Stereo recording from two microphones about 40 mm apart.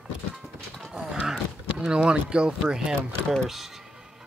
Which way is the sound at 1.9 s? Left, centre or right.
Right.